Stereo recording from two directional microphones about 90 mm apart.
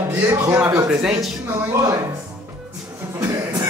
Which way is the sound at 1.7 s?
35° right (ahead or behind).